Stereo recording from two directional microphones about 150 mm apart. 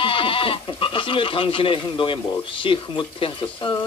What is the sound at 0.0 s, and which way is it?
A man's voice, 35° left (ahead or behind).